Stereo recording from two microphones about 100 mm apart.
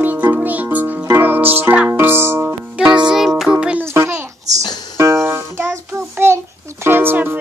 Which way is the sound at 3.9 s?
30° right (ahead or behind).